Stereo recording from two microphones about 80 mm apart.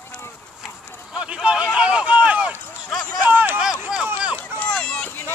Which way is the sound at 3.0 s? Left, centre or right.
Left.